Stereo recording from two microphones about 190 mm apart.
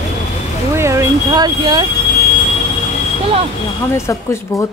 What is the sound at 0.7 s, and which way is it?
Vehicle, 15° right (ahead or behind).